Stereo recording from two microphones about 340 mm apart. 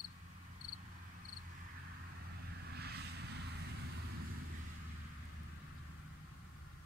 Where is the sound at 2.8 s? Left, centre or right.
Right.